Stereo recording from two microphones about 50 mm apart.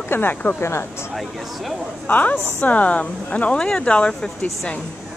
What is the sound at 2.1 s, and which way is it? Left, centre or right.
A woman's voice, left.